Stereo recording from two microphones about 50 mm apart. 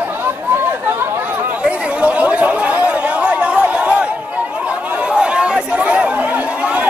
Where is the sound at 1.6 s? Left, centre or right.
Right.